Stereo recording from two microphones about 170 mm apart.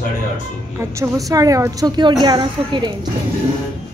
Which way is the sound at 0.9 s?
20° right (ahead or behind).